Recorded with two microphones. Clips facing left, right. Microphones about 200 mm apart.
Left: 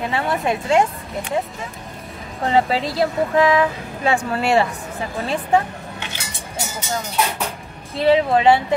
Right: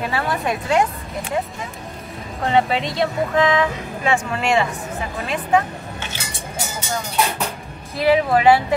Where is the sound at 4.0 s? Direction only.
35° left (ahead or behind).